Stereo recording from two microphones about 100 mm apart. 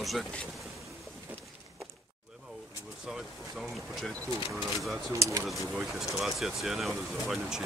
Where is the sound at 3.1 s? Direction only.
Centre (ahead or behind).